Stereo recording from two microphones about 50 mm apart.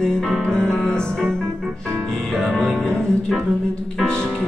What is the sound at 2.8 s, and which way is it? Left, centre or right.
Music, centre.